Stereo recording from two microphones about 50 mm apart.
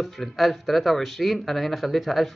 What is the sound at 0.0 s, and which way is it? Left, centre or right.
Speech, centre.